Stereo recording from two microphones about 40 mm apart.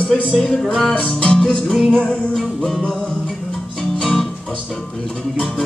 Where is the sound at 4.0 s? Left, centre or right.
Centre.